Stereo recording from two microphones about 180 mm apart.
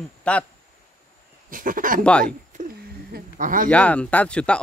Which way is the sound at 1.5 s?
50° right (ahead or behind).